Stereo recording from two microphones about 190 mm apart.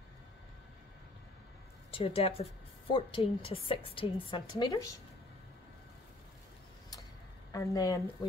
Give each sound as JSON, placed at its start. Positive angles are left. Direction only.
{"t": 1.9, "sound": "a woman's voice", "side_deg": 30}
{"t": 7.5, "sound": "speech", "side_deg": 15}